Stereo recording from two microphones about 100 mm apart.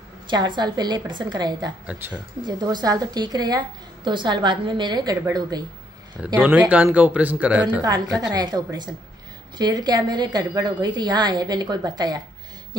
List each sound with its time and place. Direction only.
0.3 s a woman's voice: 50° right (ahead or behind)
2.0 s speech: 20° right (ahead or behind)
2.4 s a woman's voice: 45° right (ahead or behind)
6.2 s speech: 15° right (ahead or behind)
7.8 s a woman's voice: 40° right (ahead or behind)